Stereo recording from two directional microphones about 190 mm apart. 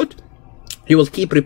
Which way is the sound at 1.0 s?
5° left (ahead or behind).